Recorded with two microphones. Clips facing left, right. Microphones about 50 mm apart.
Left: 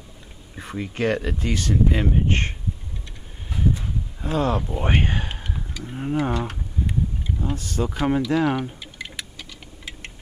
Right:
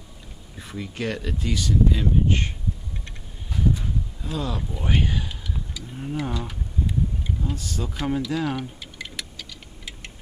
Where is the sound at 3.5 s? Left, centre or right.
Left.